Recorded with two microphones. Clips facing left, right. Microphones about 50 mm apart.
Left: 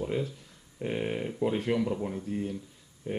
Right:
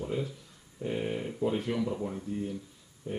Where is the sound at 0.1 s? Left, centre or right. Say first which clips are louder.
Left 1 dB; left.